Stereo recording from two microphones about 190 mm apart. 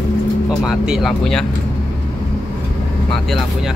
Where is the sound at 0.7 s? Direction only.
Centre (ahead or behind).